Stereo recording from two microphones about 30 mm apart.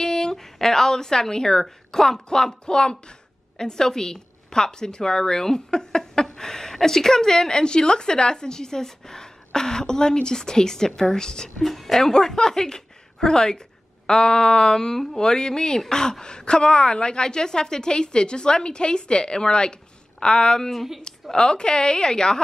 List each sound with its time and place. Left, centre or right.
0.0 s a sound: left
1.9 s a woman's voice: centre
11.6 s a woman's voice: centre
12.0 s a woman's voice: centre
20.7 s a woman's voice: centre
21.0 s a woman's voice: left